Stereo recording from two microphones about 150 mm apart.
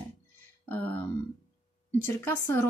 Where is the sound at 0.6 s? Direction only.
10° left (ahead or behind).